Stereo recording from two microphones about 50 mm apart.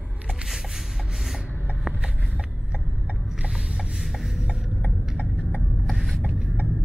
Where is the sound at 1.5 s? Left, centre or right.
Left.